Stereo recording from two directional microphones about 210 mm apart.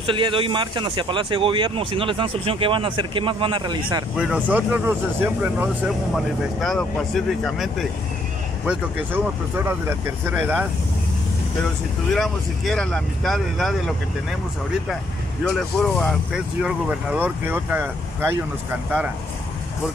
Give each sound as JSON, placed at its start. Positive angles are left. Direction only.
{"t": 0.0, "sound": "speech", "side_deg": -25}
{"t": 4.2, "sound": "speech", "side_deg": -5}
{"t": 6.1, "sound": "speech", "side_deg": 0}
{"t": 12.1, "sound": "speech", "side_deg": 0}
{"t": 15.4, "sound": "speech", "side_deg": 0}